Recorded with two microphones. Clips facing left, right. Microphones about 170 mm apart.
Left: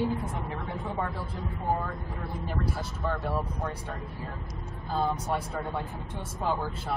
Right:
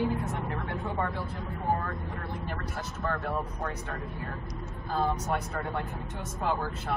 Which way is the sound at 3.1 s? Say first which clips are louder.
Left 1 dB; 5° left (ahead or behind).